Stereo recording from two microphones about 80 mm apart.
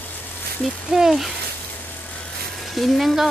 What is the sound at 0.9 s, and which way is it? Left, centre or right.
Speech, centre.